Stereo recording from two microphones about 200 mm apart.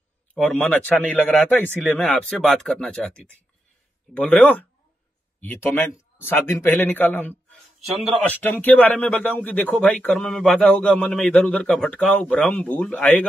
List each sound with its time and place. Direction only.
0.3 s speech: 5° left (ahead or behind)